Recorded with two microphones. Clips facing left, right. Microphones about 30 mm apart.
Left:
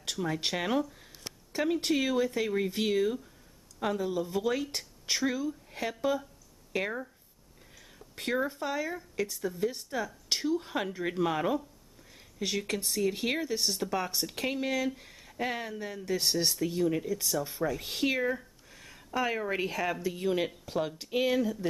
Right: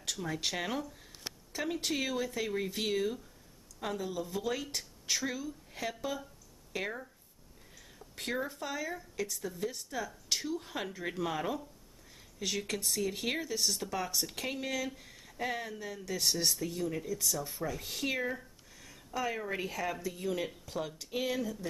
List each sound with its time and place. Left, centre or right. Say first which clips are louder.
0.0 s speech: left 4 dB; centre
5.2 s speech: left 6 dB; centre
8.2 s speech: left 5 dB; centre
18.7 s a sound: left 6 dB; left
20.1 s speech: left 5 dB; left